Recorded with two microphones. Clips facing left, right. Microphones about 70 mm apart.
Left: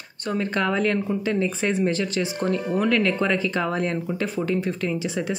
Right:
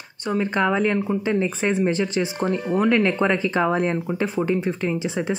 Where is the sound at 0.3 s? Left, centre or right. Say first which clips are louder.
Right 3 dB; centre.